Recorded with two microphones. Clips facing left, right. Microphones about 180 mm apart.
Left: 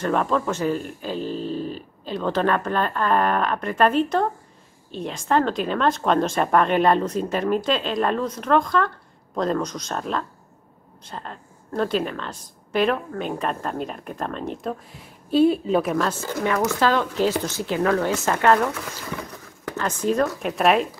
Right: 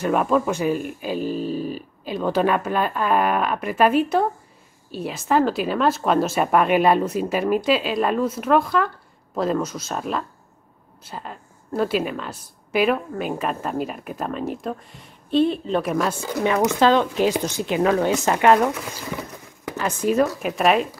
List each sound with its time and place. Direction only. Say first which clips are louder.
0.0 s a woman's voice: right 2 dB; 10° right (ahead or behind)
16.0 s a woman's voice: right 2 dB; 10° right (ahead or behind)